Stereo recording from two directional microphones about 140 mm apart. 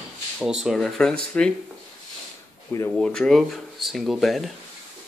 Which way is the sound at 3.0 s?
5° left (ahead or behind).